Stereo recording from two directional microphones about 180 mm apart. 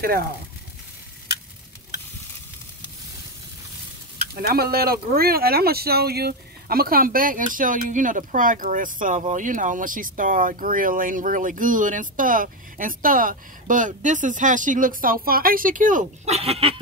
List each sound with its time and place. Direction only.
4.3 s speech: 60° right (ahead or behind); by 16.7 s 35° right (ahead or behind)